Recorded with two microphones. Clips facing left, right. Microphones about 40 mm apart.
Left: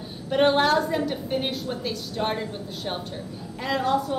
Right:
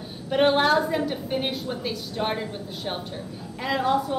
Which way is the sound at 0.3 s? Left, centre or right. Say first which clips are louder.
Even; centre.